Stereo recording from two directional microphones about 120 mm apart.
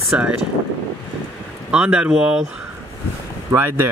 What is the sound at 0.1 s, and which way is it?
Speech, 10° right (ahead or behind).